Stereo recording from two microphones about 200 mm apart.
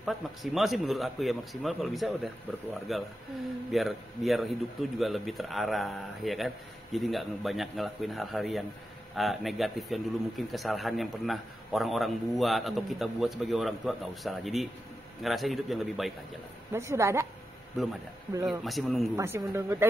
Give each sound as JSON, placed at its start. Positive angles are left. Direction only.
{"t": 0.0, "sound": "a man's voice", "side_deg": 0}
{"t": 16.7, "sound": "speech", "side_deg": -15}
{"t": 18.4, "sound": "a man's voice", "side_deg": 0}
{"t": 19.1, "sound": "speech", "side_deg": -10}